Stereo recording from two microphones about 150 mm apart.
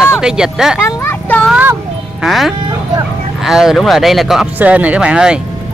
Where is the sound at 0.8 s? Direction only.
15° left (ahead or behind).